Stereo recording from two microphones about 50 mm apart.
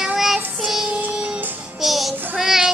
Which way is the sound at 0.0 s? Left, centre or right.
Centre.